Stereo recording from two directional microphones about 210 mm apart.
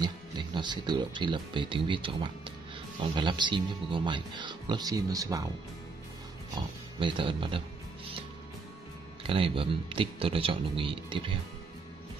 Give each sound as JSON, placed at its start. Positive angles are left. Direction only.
{"t": 0.0, "sound": "speech", "side_deg": -20}
{"t": 6.5, "sound": "speech", "side_deg": -25}
{"t": 9.2, "sound": "speech", "side_deg": -25}